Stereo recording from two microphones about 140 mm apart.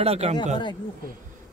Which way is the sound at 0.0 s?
50° right (ahead or behind).